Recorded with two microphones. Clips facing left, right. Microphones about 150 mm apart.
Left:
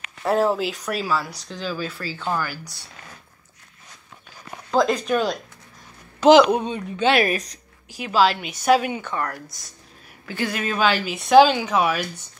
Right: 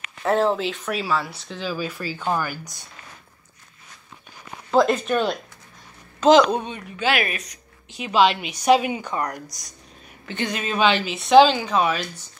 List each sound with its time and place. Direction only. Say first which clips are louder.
0.2 s speech: even; 5° left (ahead or behind); by 2.6 s 15° right (ahead or behind)
4.6 s speech: right 1 dB; 5° right (ahead or behind)
6.2 s speech: left 2 dB; 10° left (ahead or behind)
6.6 s speech: left 4 dB; 25° left (ahead or behind)
8.0 s a woman's voice: right 1 dB; 20° right (ahead or behind)
9.5 s speech: right 2 dB; centre (ahead or behind)